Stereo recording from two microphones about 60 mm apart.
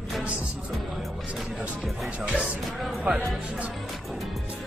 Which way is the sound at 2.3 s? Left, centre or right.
Centre.